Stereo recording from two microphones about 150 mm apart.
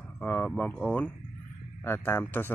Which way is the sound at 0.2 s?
10° left (ahead or behind).